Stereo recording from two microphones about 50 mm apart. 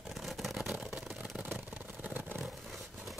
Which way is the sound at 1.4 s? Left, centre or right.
Right.